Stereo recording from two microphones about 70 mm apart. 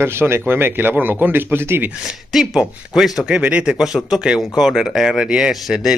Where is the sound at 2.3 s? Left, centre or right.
Centre.